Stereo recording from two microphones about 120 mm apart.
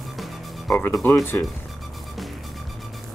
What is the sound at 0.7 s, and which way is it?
Speech, 20° left (ahead or behind).